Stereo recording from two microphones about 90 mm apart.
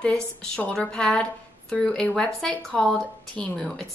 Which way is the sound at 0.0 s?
15° left (ahead or behind).